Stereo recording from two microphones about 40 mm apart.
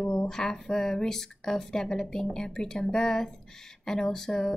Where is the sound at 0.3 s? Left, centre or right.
Centre.